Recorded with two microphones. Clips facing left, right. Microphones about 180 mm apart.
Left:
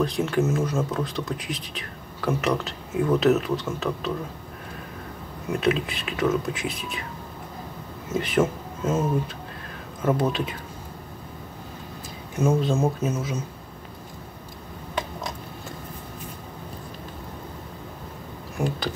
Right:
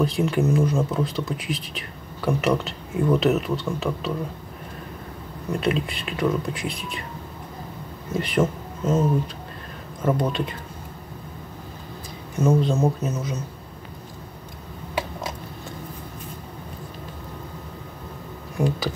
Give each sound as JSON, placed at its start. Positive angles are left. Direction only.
{"t": 0.0, "sound": "speech", "side_deg": 0}
{"t": 5.5, "sound": "speech", "side_deg": 5}
{"t": 8.1, "sound": "speech", "side_deg": 5}
{"t": 10.0, "sound": "speech", "side_deg": 5}
{"t": 12.4, "sound": "speech", "side_deg": 10}